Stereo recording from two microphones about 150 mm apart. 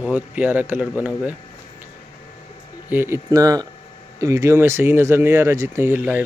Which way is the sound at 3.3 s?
25° right (ahead or behind).